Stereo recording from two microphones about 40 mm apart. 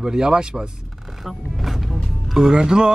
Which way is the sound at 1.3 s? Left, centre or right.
Centre.